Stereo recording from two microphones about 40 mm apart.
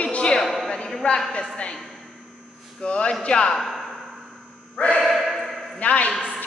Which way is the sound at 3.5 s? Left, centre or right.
Centre.